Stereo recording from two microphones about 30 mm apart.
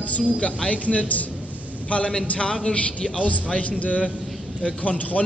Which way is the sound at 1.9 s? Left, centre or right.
Left.